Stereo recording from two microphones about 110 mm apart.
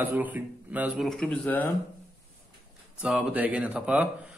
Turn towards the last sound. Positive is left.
turn(degrees=-15)  # may be behind; listen again after turning